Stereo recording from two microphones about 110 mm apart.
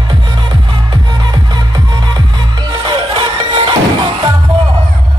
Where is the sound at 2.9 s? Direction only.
50° right (ahead or behind).